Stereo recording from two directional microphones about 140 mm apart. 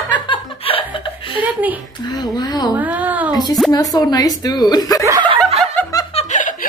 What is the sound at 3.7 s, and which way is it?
A woman's voice, 25° left (ahead or behind).